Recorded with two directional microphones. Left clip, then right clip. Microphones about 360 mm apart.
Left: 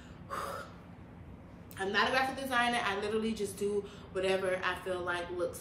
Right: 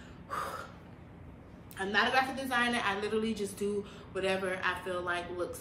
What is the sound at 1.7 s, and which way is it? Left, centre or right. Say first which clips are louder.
A woman's voice: right 2 dB; centre.